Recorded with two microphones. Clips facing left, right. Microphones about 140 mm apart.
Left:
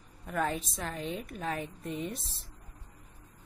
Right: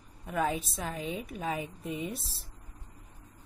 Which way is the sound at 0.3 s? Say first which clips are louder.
Right 1 dB; 5° right (ahead or behind).